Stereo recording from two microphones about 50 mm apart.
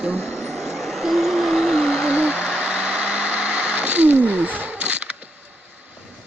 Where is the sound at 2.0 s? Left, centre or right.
Centre.